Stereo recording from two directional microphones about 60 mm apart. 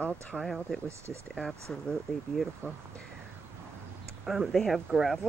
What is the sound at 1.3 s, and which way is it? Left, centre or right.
Speech, centre.